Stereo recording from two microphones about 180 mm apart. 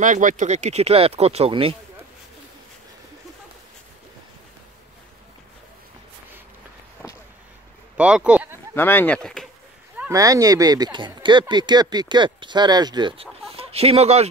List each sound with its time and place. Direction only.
0.0 s speech: 45° right (ahead or behind)
8.0 s speech: 5° right (ahead or behind)
8.7 s speech: 10° left (ahead or behind)
9.9 s speech: 15° right (ahead or behind); by 14.3 s 35° right (ahead or behind)